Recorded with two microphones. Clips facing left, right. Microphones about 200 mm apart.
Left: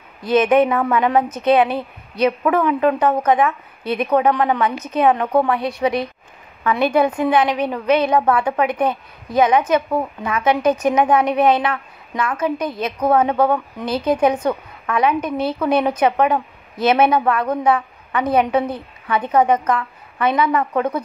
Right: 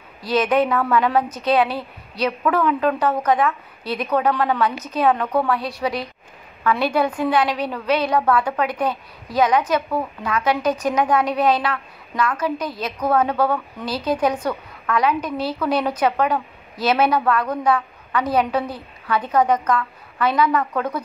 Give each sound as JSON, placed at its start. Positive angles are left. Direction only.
{"t": 0.4, "sound": "a woman's voice", "side_deg": 20}
{"t": 3.8, "sound": "speech", "side_deg": 55}
{"t": 4.1, "sound": "a woman's voice", "side_deg": 20}